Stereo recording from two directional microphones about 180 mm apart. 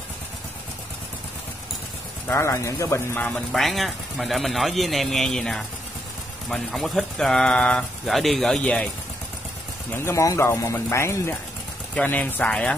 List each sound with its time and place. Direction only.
2.2 s speech: 15° left (ahead or behind)
9.9 s speech: 15° left (ahead or behind)